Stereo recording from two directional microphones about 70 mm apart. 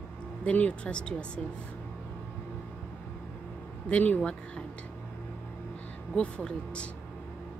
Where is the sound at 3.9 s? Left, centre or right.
Centre.